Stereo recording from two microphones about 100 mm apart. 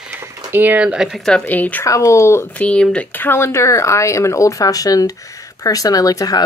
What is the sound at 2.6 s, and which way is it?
Speech, 10° left (ahead or behind).